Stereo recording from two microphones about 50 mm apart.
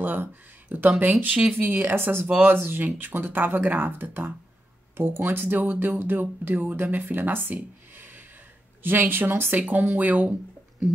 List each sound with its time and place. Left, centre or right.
0.0 s speech: right
1.2 s speech: right
1.6 s speech: right
9.6 s speech: right